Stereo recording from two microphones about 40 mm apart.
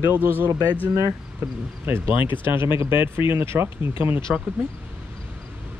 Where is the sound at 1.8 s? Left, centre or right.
Right.